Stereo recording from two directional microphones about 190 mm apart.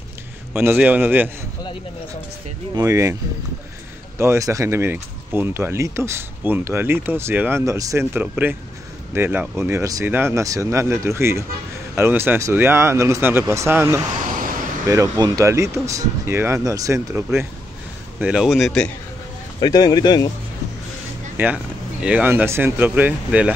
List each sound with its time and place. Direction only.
0.5 s speech: 10° right (ahead or behind)
2.7 s speech: 15° right (ahead or behind)
4.2 s speech: 15° right (ahead or behind)
14.2 s a sound: 45° right (ahead or behind)
14.9 s speech: 20° right (ahead or behind); by 18.9 s centre (ahead or behind)
19.6 s speech: 20° left (ahead or behind)
21.4 s speech: 10° right (ahead or behind)